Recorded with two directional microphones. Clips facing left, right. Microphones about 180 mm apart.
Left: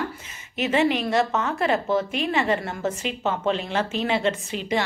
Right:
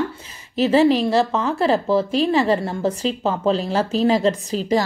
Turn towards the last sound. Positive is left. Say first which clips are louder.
# right 6 dB
turn(degrees=-35)  # may be behind; listen again after turning